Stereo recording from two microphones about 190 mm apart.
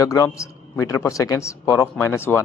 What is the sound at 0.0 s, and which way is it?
A man's voice, 15° left (ahead or behind).